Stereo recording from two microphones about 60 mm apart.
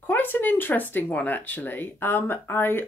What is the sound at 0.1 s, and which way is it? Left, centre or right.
Speech, left.